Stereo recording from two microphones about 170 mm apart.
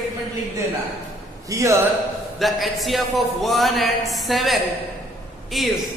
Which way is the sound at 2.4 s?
Centre (ahead or behind).